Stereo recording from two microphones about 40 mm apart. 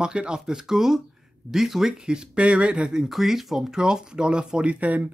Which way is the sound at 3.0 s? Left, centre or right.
Centre.